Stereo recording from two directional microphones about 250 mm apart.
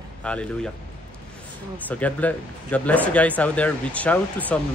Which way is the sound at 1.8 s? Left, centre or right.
Centre.